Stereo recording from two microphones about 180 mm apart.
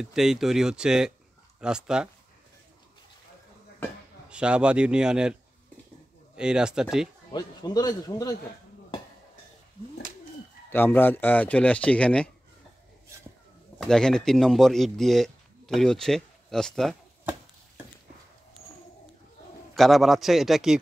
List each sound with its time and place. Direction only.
0.0 s speech: 5° right (ahead or behind)
4.3 s speech: 5° right (ahead or behind)
7.3 s a man's voice: 20° left (ahead or behind)
10.7 s speech: 10° left (ahead or behind)
13.7 s speech: 5° left (ahead or behind)
19.7 s speech: centre (ahead or behind)